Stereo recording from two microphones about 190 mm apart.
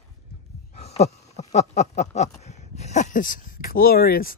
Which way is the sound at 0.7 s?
35° left (ahead or behind).